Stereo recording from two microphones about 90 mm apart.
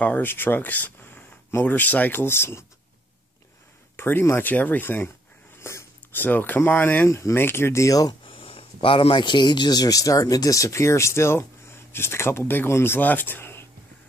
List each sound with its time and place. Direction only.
0.0 s speech: 20° left (ahead or behind)
3.9 s speech: 25° left (ahead or behind)
7.1 s speech: 30° left (ahead or behind)
8.1 s speech: 80° left; by 13.7 s 25° left (ahead or behind)